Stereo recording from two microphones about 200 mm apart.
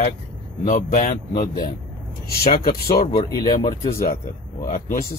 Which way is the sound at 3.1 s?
25° left (ahead or behind).